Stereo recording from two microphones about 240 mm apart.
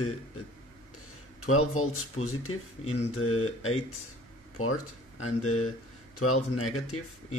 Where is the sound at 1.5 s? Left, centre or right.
Left.